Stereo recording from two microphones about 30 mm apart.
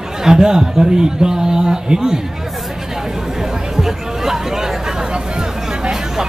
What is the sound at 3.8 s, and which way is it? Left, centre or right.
Chatter, centre.